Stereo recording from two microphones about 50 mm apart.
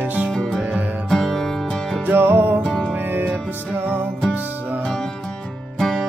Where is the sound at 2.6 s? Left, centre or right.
Left.